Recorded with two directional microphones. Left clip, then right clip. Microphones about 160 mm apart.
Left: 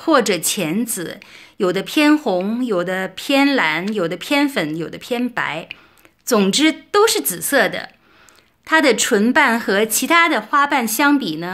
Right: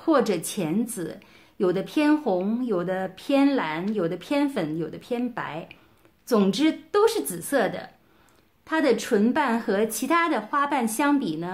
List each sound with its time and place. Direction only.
0.0 s a woman's voice: 15° left (ahead or behind)